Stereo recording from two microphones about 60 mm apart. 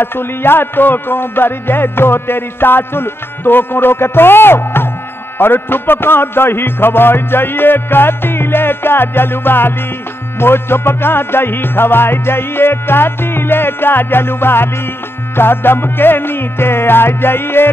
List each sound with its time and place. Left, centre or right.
0.0 s music: left